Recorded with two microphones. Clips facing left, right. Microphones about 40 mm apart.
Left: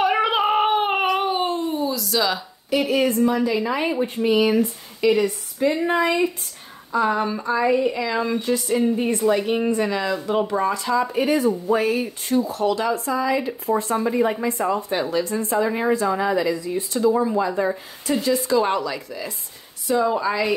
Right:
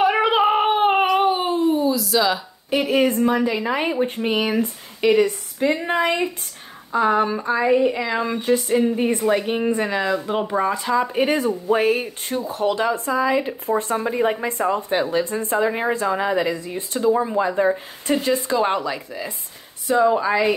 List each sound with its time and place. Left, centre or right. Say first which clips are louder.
0.0 s cat: right 2 dB; centre
2.9 s speech: right 2 dB; right
5.2 s speech: right 1 dB; right
8.6 s speech: right 1 dB; centre
18.6 s speech: even; centre